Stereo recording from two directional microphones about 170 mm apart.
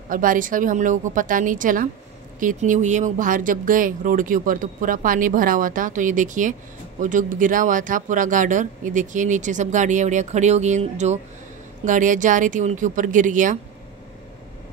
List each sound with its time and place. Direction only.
0.1 s speech: 55° right (ahead or behind)